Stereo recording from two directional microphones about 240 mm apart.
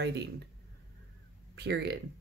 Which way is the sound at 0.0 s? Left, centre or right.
Right.